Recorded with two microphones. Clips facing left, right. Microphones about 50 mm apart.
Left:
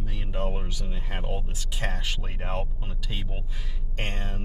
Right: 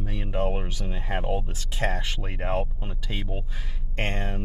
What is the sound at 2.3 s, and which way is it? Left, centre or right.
Speech, centre.